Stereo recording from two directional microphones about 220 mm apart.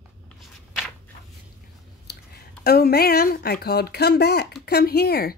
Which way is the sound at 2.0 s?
45° left (ahead or behind).